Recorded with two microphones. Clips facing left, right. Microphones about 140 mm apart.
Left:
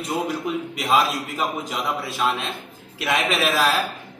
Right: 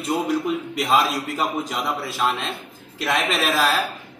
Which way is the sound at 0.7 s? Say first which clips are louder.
Even; centre (ahead or behind).